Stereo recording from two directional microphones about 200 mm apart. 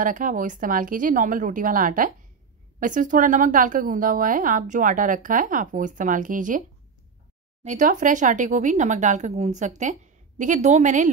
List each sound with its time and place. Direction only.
0.0 s a woman's voice: 40° right (ahead or behind)
7.6 s a woman's voice: 40° right (ahead or behind)